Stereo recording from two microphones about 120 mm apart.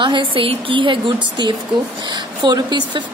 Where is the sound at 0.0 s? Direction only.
40° right (ahead or behind).